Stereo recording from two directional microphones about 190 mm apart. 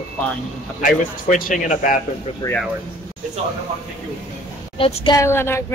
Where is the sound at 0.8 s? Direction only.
45° left (ahead or behind).